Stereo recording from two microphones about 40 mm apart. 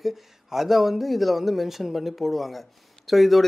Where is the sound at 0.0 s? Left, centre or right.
Centre.